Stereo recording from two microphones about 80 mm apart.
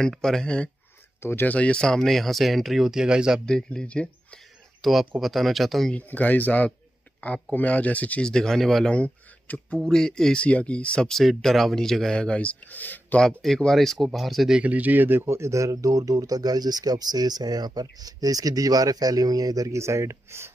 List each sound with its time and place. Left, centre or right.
0.0 s speech: centre
1.2 s speech: left; by 3.4 s centre
3.4 s speech: centre
4.8 s speech: centre
5.9 s speech: left; by 8.9 s centre
8.9 s speech: centre
13.4 s speech: centre
14.6 s speech: centre